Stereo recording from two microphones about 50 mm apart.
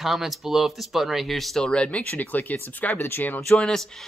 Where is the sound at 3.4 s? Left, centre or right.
Centre.